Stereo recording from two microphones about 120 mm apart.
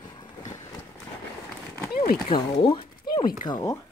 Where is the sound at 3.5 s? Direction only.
30° left (ahead or behind).